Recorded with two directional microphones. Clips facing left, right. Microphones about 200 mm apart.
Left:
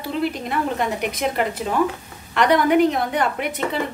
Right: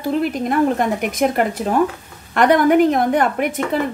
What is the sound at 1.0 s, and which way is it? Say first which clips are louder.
A woman's voice: right 5 dB; 50° right (ahead or behind).